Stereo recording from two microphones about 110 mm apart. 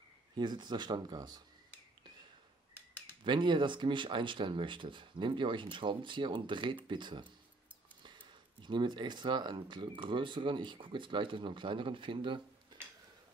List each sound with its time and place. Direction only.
0.4 s speech: 45° right (ahead or behind)
3.3 s speech: 45° right (ahead or behind)